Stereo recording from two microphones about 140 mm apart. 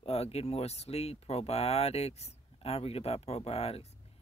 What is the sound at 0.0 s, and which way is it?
Speech, 50° left (ahead or behind).